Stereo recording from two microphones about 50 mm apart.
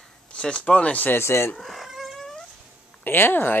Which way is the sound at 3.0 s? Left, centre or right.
Left.